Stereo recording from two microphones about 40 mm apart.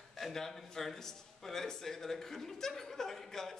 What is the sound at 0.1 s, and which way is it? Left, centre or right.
A man's voice, centre.